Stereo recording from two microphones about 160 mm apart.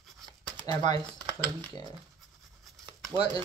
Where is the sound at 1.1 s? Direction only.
25° right (ahead or behind).